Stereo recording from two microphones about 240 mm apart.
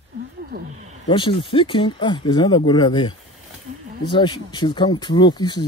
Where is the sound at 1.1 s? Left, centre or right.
Left.